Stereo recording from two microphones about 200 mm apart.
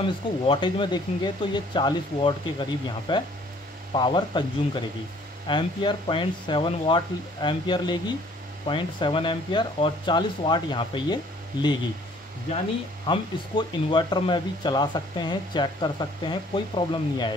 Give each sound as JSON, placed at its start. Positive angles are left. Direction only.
{"t": 0.0, "sound": "speech", "side_deg": 25}
{"t": 13.0, "sound": "speech", "side_deg": 25}